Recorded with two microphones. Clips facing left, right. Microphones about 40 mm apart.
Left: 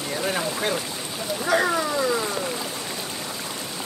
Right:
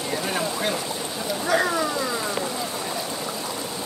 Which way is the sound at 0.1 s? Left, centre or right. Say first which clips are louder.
Left 1 dB; centre.